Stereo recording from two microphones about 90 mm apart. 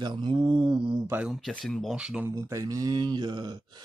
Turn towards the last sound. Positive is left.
turn(degrees=-55)  # may be behind; listen again after turning